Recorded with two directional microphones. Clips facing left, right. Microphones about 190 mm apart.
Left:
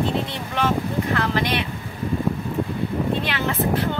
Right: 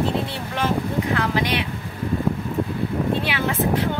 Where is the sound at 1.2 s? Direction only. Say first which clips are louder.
Even; 10° right (ahead or behind).